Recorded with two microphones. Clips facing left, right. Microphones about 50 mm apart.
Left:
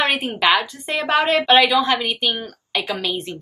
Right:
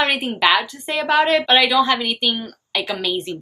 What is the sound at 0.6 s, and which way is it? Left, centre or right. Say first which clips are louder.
A woman's voice: right 1 dB; centre.